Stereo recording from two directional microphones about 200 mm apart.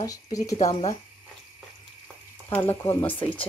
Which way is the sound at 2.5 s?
10° left (ahead or behind).